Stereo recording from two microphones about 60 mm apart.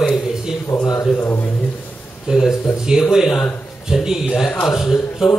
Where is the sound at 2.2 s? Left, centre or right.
Centre.